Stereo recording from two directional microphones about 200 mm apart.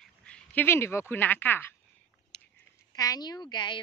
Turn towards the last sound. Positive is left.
turn(degrees=20)  # may be behind; listen again after turning